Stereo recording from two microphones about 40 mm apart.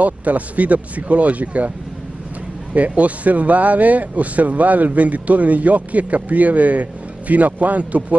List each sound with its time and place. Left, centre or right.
0.0 s speech: right
2.7 s speech: right